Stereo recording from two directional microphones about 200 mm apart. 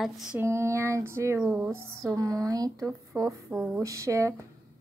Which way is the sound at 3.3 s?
Centre (ahead or behind).